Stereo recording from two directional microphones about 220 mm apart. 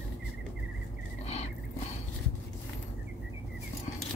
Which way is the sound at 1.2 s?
30° left (ahead or behind).